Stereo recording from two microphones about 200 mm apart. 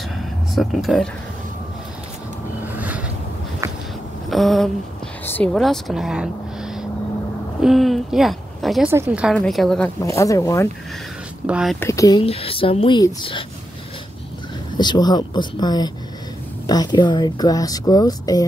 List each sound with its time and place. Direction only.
0.6 s a woman's voice: centre (ahead or behind)
2.6 s a sound: 10° right (ahead or behind)
4.3 s a sound: centre (ahead or behind)
5.2 s a woman's voice: 10° left (ahead or behind)
10.0 s speech: 15° left (ahead or behind)
11.4 s a woman's voice: 5° right (ahead or behind)
11.8 s speech: 15° left (ahead or behind)
12.2 s speech: 30° left (ahead or behind)
14.8 s speech: 20° left (ahead or behind)